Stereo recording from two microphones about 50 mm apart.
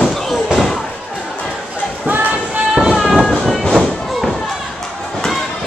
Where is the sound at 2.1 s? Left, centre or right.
Right.